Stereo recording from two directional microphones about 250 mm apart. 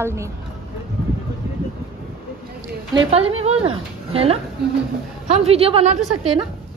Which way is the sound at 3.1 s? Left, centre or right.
Right.